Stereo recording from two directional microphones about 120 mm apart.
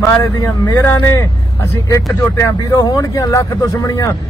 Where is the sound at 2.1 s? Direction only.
25° left (ahead or behind).